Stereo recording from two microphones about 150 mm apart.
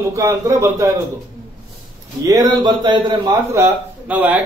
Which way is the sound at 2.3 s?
25° right (ahead or behind).